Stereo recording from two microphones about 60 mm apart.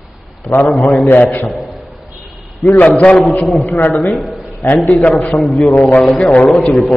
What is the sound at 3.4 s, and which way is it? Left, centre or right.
Speech, centre.